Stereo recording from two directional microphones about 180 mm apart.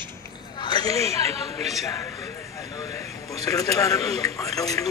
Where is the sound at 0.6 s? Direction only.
25° left (ahead or behind).